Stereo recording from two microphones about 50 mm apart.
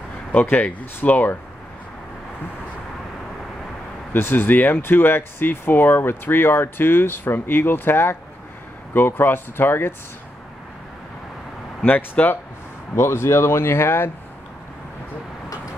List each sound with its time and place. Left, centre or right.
0.4 s speech: left
4.1 s speech: left
11.8 s speech: left
12.9 s speech: left